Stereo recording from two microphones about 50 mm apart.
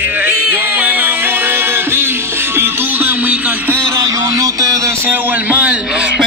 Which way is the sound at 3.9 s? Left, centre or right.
Right.